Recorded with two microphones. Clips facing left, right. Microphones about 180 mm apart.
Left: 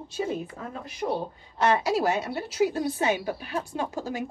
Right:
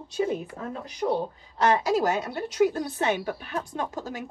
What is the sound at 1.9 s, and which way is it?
A woman's voice, 5° left (ahead or behind).